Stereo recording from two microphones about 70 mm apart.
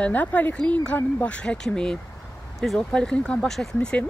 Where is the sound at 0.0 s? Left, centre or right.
Left.